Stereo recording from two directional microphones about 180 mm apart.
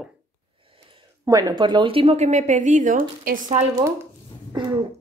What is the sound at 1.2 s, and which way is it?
Speech, 25° right (ahead or behind).